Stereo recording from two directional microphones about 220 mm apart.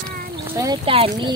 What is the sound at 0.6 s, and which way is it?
Speech, 20° right (ahead or behind).